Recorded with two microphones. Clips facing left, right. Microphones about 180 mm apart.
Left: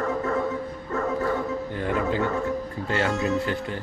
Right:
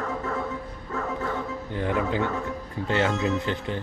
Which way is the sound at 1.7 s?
15° right (ahead or behind).